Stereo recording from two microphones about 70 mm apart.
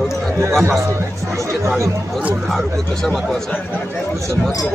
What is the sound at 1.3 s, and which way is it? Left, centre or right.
Speech, right.